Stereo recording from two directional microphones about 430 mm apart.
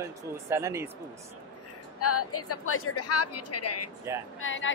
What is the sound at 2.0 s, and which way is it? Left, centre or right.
A woman's voice, left.